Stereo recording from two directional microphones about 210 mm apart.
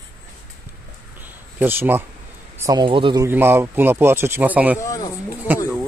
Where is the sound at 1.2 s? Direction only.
10° right (ahead or behind).